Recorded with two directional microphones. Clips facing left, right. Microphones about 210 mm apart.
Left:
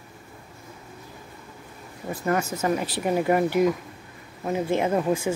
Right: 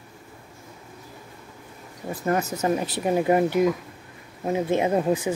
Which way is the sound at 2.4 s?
40° right (ahead or behind).